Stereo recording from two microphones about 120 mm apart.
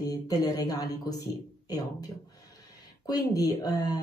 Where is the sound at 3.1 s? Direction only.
30° left (ahead or behind).